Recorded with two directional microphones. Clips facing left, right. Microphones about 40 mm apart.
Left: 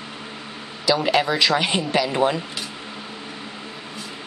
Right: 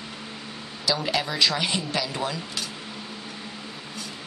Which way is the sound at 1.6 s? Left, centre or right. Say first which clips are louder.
Left 6 dB; left.